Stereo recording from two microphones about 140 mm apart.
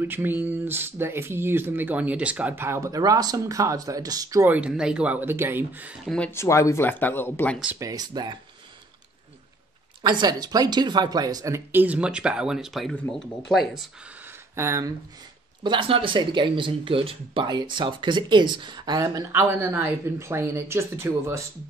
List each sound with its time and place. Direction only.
0.0 s speech: 15° right (ahead or behind)
4.5 s speech: 10° right (ahead or behind)
6.0 s speech: 10° left (ahead or behind)
6.3 s speech: 20° left (ahead or behind)
7.8 s speech: 30° right (ahead or behind)
10.0 s speech: 30° right (ahead or behind); by 13.0 s centre (ahead or behind)
14.2 s a sound: 20° right (ahead or behind)
15.6 s speech: 35° right (ahead or behind); by 21.5 s 20° right (ahead or behind)